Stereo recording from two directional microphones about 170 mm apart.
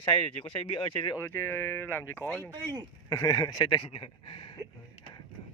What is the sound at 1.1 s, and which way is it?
Speech, 15° left (ahead or behind).